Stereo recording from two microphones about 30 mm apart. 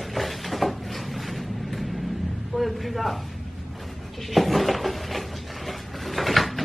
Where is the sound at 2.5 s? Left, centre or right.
Centre.